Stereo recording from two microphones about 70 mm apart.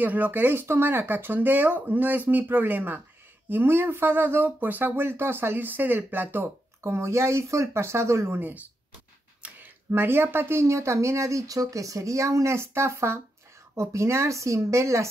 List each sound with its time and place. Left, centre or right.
0.0 s speech: right
8.4 s speech: right